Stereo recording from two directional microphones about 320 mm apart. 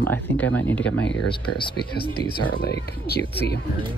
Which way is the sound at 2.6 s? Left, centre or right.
Left.